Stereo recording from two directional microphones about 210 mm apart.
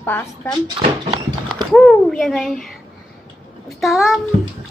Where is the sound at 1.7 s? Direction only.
Centre (ahead or behind).